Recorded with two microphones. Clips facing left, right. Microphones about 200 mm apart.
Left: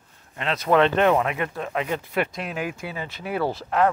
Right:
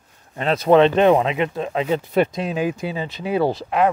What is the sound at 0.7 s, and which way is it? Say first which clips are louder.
Speech: right 5 dB; 20° right (ahead or behind).